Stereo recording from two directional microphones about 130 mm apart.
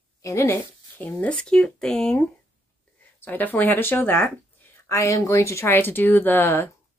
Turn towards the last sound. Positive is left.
turn(degrees=15)  # may be behind; listen again after turning